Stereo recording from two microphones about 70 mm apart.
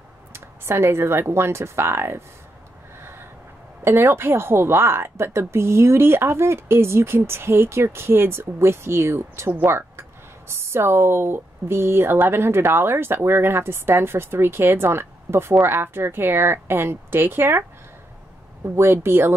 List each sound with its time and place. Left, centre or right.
0.3 s a sound: right
1.3 s speech: right
3.0 s gasp: right
3.8 s speech: right
18.8 s speech: right